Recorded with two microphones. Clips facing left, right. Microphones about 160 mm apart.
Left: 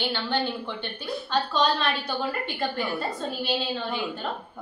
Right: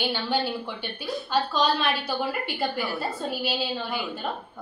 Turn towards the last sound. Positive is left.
turn(degrees=-5)  # may be behind; listen again after turning